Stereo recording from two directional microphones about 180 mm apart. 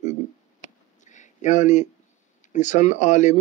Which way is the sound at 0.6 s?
40° left (ahead or behind).